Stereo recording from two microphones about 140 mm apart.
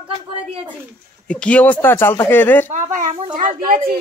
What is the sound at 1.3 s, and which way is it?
Speech, 10° left (ahead or behind).